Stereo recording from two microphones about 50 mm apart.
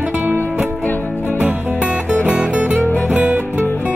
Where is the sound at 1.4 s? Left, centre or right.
Right.